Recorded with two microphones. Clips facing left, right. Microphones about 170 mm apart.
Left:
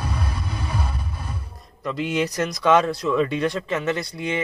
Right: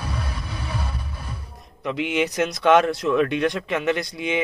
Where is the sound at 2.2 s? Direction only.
Centre (ahead or behind).